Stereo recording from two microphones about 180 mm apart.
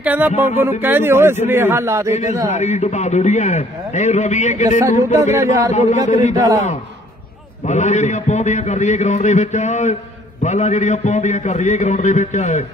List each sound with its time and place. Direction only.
0.0 s speech: 10° right (ahead or behind)
2.5 s a man's voice: 40° left (ahead or behind)
5.3 s speech: 15° right (ahead or behind)
5.7 s a man's voice: 40° left (ahead or behind)
7.6 s a man's voice: 40° left (ahead or behind)